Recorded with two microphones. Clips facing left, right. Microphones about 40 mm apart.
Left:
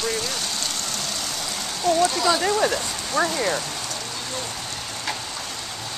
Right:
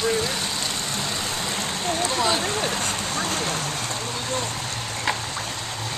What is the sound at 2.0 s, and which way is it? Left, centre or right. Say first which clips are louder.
Speech: left 1 dB; right.